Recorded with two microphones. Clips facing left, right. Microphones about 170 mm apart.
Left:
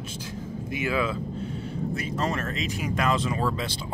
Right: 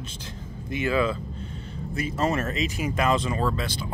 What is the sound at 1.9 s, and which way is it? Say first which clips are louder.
Speech: right 6 dB; 5° right (ahead or behind).